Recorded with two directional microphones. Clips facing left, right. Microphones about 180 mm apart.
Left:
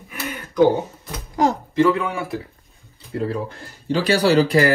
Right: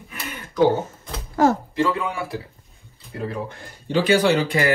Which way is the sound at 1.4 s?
15° left (ahead or behind).